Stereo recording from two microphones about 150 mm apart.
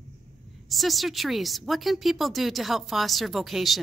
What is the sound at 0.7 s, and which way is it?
A woman's voice, centre (ahead or behind).